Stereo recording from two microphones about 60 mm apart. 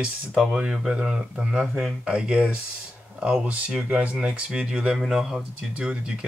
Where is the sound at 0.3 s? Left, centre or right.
Centre.